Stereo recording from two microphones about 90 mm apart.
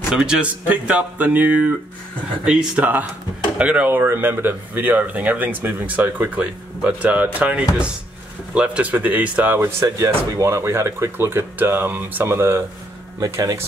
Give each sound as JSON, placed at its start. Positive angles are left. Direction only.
{"t": 0.1, "sound": "speech", "side_deg": -10}
{"t": 9.6, "sound": "speech", "side_deg": -30}
{"t": 13.2, "sound": "speech", "side_deg": -40}